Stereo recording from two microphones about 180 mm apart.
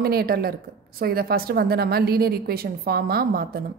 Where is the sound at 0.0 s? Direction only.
60° right (ahead or behind).